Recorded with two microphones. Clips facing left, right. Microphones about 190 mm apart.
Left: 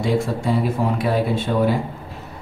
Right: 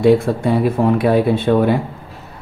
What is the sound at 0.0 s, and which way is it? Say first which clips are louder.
Speech: right 8 dB; 60° right (ahead or behind).